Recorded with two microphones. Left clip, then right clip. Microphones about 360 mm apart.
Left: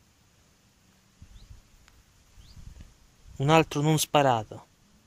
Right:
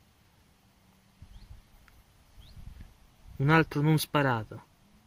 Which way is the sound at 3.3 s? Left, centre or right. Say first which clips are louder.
Left 3 dB; centre.